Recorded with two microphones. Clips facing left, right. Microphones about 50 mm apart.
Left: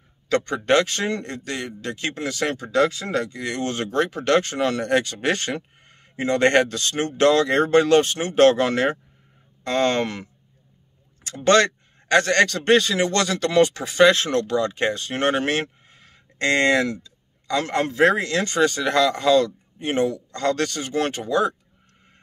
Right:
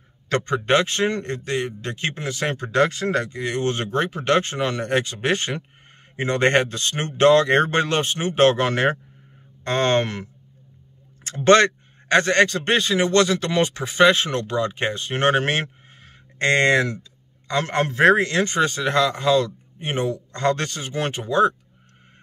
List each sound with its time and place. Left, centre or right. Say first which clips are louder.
0.3 s speech: even; right
3.4 s speech: right 2 dB; right
7.5 s speech: left 2 dB; right
7.8 s speech: left 4 dB; right
9.7 s a man's voice: right 1 dB; right
11.2 s a man's voice: right 2 dB; right
18.8 s speech: left 1 dB; centre
20.1 s speech: right 2 dB; right
20.7 s speech: left 2 dB; centre
21.3 s a man's voice: right 5 dB; right